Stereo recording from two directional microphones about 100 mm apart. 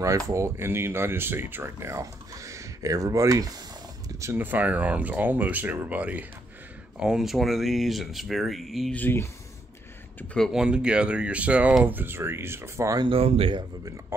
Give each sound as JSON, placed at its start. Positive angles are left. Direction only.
{"t": 0.3, "sound": "speech", "side_deg": -25}
{"t": 4.2, "sound": "speech", "side_deg": -20}
{"t": 8.9, "sound": "speech", "side_deg": 20}
{"t": 10.5, "sound": "speech", "side_deg": -10}
{"t": 13.0, "sound": "speech", "side_deg": -70}